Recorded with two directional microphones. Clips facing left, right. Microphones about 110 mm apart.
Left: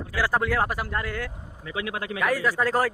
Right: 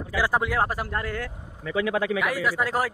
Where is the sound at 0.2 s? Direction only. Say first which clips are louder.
Even; 20° right (ahead or behind).